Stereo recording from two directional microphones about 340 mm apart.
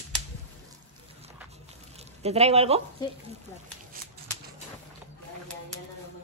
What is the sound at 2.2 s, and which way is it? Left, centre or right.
Speech, centre.